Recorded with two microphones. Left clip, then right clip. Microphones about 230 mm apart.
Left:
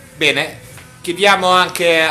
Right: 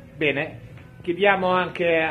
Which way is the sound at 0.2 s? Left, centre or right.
Centre.